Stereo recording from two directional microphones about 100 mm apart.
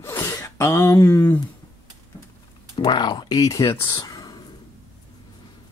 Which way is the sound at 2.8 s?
45° left (ahead or behind).